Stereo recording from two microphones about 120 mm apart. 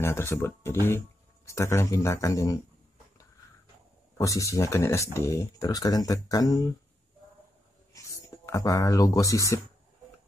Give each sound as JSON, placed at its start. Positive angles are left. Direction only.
{"t": 0.0, "sound": "speech", "side_deg": 20}
{"t": 4.2, "sound": "speech", "side_deg": 25}
{"t": 7.9, "sound": "speech", "side_deg": 25}